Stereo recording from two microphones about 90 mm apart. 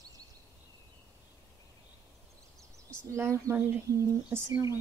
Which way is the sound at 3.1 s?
30° right (ahead or behind).